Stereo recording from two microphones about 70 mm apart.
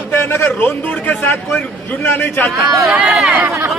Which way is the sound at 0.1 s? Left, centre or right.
Left.